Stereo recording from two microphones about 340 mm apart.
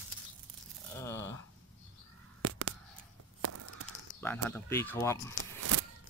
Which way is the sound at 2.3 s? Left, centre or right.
Right.